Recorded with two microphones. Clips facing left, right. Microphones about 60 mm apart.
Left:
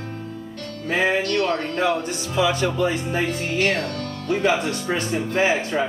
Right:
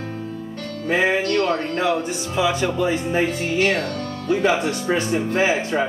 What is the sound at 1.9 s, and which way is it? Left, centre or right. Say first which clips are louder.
Speech: right 1 dB; right.